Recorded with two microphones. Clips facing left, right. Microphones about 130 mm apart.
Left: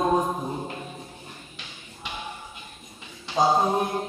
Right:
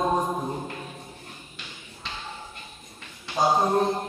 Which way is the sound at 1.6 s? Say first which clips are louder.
Even; 15° left (ahead or behind).